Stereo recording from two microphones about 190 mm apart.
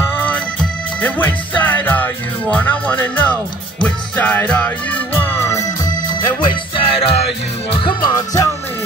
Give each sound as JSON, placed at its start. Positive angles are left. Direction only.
{"t": 0.0, "sound": "music", "side_deg": 10}
{"t": 6.4, "sound": "music", "side_deg": 25}